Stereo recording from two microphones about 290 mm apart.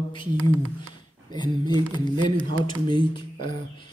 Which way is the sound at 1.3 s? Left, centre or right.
Centre.